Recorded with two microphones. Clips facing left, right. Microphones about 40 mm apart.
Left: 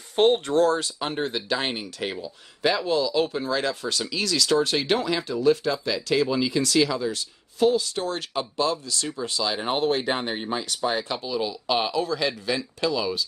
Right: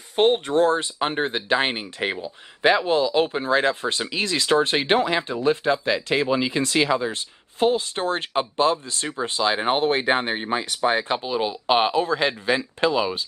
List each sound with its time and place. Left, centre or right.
0.1 s speech: centre; by 13.2 s right